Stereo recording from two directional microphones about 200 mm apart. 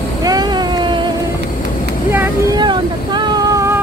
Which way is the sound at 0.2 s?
20° right (ahead or behind).